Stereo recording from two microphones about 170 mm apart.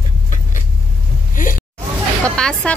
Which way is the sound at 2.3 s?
5° left (ahead or behind).